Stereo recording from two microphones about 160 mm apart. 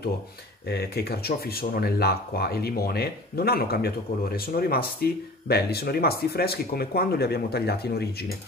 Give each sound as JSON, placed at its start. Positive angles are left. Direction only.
{"t": 0.7, "sound": "speech", "side_deg": 80}